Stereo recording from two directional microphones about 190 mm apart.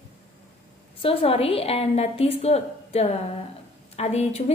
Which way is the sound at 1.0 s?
30° left (ahead or behind).